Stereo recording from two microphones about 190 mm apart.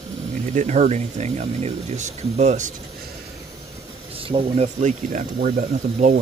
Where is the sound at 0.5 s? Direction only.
35° right (ahead or behind).